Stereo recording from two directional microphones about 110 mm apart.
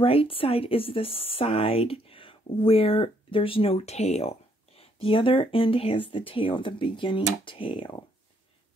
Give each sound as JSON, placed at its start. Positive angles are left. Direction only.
{"t": 0.0, "sound": "speech", "side_deg": 60}